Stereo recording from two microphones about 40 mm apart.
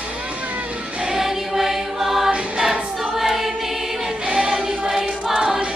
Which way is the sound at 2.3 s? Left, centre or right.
Right.